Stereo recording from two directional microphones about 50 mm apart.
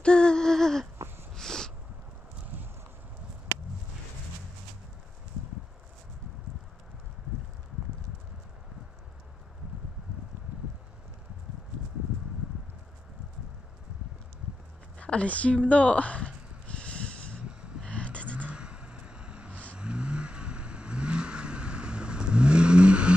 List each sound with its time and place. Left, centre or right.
0.0 s a sound: centre
15.0 s a woman's voice: left
16.6 s snort: left
17.5 s a sound: right
17.8 s vehicle: left
18.5 s vehicle: right